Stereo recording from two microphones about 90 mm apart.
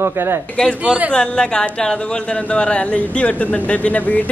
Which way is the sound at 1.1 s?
10° left (ahead or behind).